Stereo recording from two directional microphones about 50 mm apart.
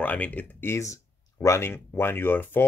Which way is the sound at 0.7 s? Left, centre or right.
Left.